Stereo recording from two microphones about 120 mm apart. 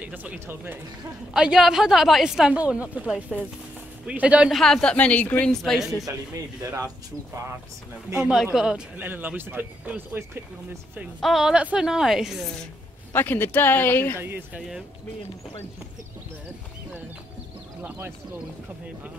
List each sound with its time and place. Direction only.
0.0 s a woman's voice: 15° right (ahead or behind)
4.5 s a woman's voice: centre (ahead or behind)
5.6 s a woman's voice: centre (ahead or behind)
6.6 s speech: 20° right (ahead or behind)
8.5 s speech: 5° right (ahead or behind)
11.1 s a woman's voice: centre (ahead or behind)
13.1 s speech: 20° left (ahead or behind)
14.2 s speech: 15° right (ahead or behind)